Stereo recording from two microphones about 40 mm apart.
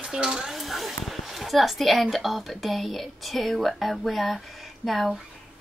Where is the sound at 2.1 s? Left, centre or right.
Centre.